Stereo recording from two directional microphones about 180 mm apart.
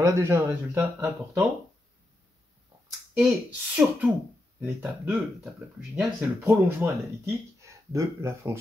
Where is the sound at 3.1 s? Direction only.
5° right (ahead or behind).